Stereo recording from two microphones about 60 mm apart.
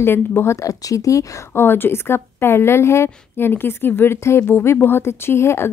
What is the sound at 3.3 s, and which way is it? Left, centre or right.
Speech, left.